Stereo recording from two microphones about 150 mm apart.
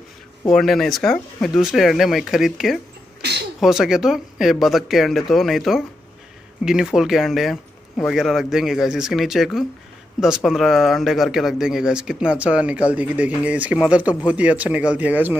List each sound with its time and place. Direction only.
0.5 s speech: centre (ahead or behind)
3.2 s a sound: 90° right
3.6 s speech: 5° right (ahead or behind)